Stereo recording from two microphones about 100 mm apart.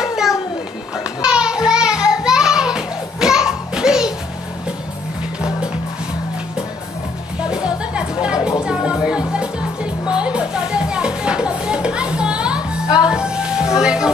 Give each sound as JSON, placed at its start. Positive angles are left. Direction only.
{"t": 0.0, "sound": "a sound", "side_deg": -5}
{"t": 7.5, "sound": "music", "side_deg": -10}
{"t": 12.8, "sound": "music", "side_deg": 45}
{"t": 13.1, "sound": "music", "side_deg": -10}